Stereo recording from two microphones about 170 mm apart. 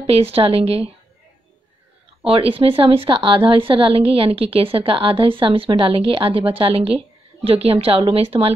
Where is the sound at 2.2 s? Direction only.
35° right (ahead or behind).